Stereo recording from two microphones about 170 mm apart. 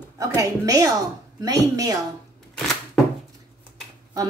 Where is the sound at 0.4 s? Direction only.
20° right (ahead or behind).